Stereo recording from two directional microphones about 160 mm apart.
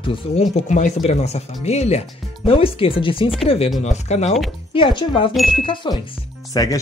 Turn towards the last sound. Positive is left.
turn(degrees=20)  # may be behind; listen again after turning